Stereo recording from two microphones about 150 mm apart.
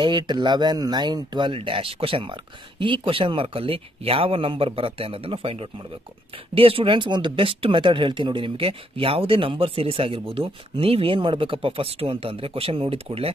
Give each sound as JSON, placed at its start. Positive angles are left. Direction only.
{"t": 0.0, "sound": "speech", "side_deg": -30}